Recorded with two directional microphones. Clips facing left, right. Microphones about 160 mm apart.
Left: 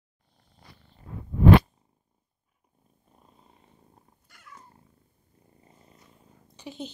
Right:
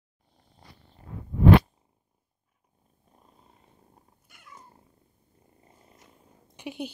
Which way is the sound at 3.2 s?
Centre (ahead or behind).